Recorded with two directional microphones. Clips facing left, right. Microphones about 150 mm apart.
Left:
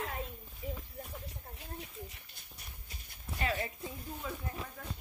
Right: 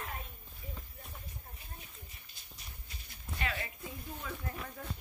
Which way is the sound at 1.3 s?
80° left.